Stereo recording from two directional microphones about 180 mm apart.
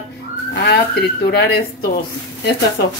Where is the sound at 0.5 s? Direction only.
65° left (ahead or behind).